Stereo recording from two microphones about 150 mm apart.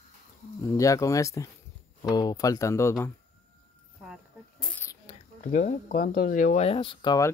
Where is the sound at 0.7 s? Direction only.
20° left (ahead or behind).